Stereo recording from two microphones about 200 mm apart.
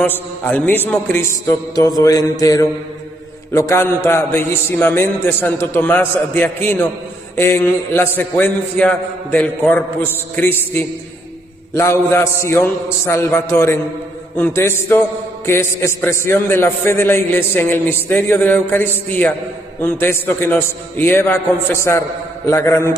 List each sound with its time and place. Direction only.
0.0 s a man's voice: 10° left (ahead or behind)